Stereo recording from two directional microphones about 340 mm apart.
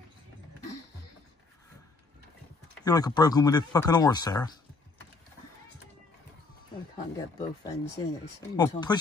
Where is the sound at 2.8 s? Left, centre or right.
Centre.